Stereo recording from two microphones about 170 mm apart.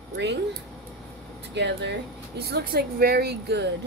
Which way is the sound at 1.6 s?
90° right.